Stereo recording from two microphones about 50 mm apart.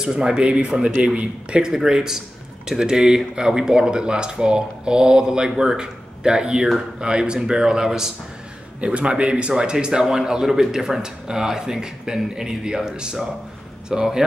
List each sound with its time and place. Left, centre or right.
0.0 s a man's voice: centre
1.7 s a man's voice: centre
8.8 s a man's voice: right